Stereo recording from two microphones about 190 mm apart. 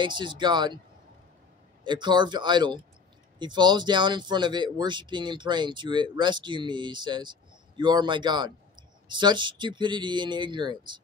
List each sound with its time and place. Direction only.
0.0 s speech: 25° right (ahead or behind)
1.9 s speech: 25° right (ahead or behind)